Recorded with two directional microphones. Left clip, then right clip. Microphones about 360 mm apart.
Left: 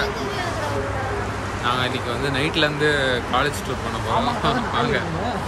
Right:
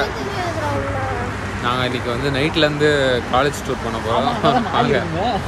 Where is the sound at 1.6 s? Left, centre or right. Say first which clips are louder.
Right 2 dB; centre.